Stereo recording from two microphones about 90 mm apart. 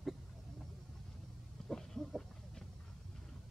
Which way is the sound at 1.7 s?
5° left (ahead or behind).